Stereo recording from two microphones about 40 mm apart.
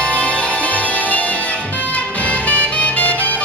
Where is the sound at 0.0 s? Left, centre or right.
Left.